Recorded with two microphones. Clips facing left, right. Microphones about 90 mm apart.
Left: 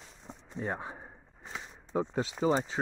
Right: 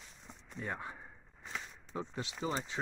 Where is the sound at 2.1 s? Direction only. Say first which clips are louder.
Left 9 dB; 35° left (ahead or behind).